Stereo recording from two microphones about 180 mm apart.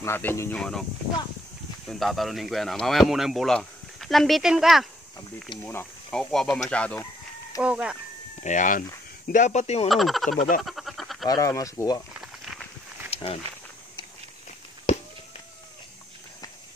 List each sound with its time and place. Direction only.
0.0 s speech: 10° left (ahead or behind)
1.9 s speech: centre (ahead or behind)
5.6 s speech: 10° left (ahead or behind)
7.6 s speech: 5° right (ahead or behind)
8.4 s a man's voice: 45° left (ahead or behind)
9.8 s speech: centre (ahead or behind)
10.6 s a sound: centre (ahead or behind)
11.2 s speech: 20° left (ahead or behind)
12.2 s snake: centre (ahead or behind)
13.1 s walk: 30° left (ahead or behind)